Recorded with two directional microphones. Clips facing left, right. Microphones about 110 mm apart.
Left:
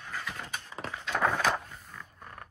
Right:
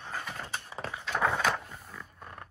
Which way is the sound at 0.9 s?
15° right (ahead or behind).